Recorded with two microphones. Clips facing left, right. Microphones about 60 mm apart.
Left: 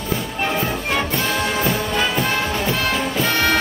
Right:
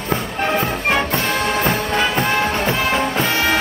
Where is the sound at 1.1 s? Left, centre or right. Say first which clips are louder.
Right 2 dB; right.